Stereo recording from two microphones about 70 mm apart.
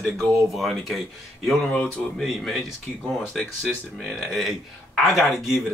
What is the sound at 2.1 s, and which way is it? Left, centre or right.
Speech, centre.